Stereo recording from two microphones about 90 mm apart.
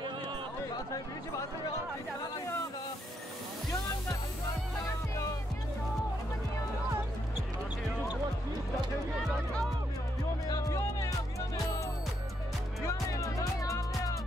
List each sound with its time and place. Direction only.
10.5 s music: 35° left (ahead or behind)
12.8 s music: 40° left (ahead or behind)